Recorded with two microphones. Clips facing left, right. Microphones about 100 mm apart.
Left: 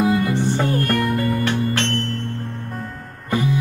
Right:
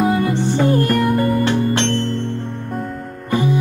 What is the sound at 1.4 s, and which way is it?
Music, 25° right (ahead or behind).